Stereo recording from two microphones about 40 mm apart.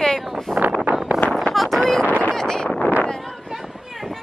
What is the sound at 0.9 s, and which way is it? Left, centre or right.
Vehicle, right.